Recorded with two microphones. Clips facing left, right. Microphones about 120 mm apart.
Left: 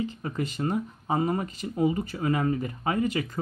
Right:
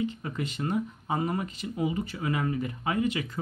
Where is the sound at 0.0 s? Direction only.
35° left (ahead or behind).